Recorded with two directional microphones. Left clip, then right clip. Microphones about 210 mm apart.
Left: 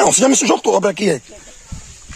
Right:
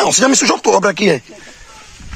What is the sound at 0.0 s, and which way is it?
Speech, 40° left (ahead or behind).